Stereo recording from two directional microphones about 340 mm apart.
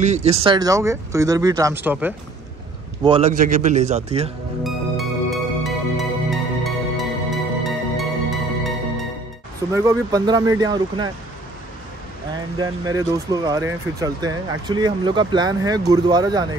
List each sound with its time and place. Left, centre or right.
0.0 s speech: centre
3.0 s a man's voice: centre
4.6 s music: centre
9.8 s speech: centre
12.5 s speech: centre